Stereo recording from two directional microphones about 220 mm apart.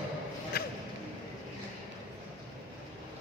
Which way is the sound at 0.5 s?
45° left (ahead or behind).